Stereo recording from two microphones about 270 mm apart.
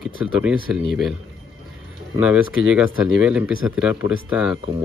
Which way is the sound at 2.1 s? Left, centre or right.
Centre.